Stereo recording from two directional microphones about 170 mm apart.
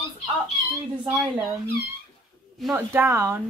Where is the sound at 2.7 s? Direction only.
15° right (ahead or behind).